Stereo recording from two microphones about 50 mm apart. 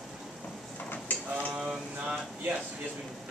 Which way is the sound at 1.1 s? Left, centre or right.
Left.